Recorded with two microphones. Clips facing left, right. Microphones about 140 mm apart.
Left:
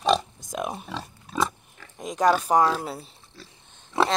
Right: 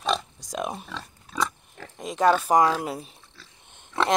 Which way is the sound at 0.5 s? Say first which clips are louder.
Even; centre (ahead or behind).